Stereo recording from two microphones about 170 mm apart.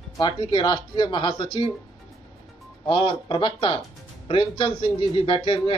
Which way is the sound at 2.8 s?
30° left (ahead or behind).